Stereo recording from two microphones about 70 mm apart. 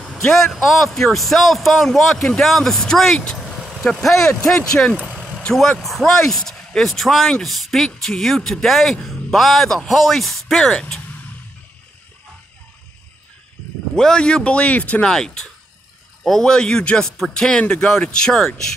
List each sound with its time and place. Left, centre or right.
0.0 s a man's voice: centre
10.7 s speech: centre
13.9 s speech: centre
15.0 s speech: centre